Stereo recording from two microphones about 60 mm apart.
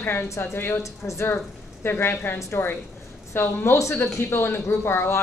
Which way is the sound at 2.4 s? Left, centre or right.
Left.